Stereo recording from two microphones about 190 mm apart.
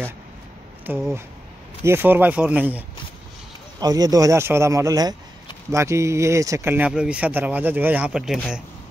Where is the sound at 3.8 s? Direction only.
20° right (ahead or behind).